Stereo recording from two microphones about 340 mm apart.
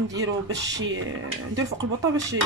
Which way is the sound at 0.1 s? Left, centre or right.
Right.